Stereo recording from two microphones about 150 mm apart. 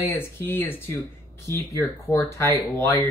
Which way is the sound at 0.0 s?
15° left (ahead or behind).